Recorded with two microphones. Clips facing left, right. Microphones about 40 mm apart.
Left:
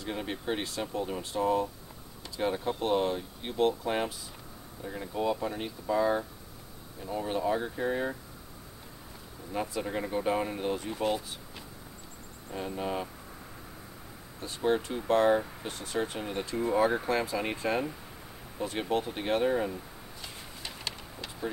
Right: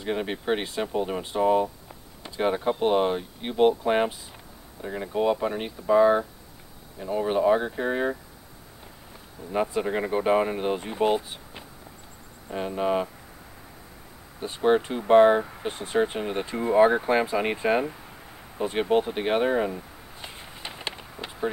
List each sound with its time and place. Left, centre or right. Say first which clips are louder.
0.0 s speech: right 6 dB; right
9.5 s speech: right 7 dB; right
14.4 s speech: right 7 dB; right
18.6 s a sound: right 7 dB; right